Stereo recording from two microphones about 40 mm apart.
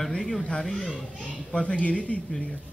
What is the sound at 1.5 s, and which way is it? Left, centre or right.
Speech, left.